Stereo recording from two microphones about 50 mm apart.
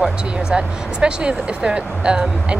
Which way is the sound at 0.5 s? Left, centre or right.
Centre.